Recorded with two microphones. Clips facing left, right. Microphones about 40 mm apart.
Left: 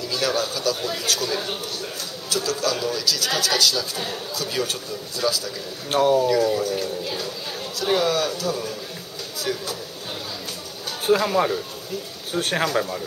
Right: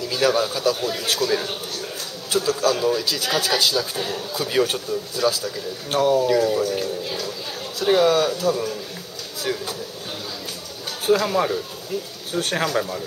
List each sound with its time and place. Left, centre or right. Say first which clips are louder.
0.1 s speech: right 4 dB; centre
0.7 s speech: right 2 dB; centre
2.2 s a man's voice: right 4 dB; right
5.9 s speech: even; centre
6.2 s speech: right 1 dB; centre
11.1 s speech: even; centre